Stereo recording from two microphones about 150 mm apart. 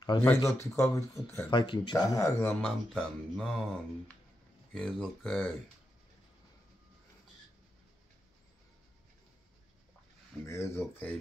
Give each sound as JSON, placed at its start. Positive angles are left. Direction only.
{"t": 0.2, "sound": "speech", "side_deg": 15}
{"t": 1.5, "sound": "speech", "side_deg": 30}
{"t": 2.4, "sound": "speech", "side_deg": 5}
{"t": 4.7, "sound": "speech", "side_deg": 5}
{"t": 10.4, "sound": "speech", "side_deg": 15}